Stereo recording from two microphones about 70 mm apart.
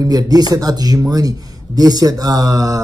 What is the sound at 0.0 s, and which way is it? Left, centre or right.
Speech, right.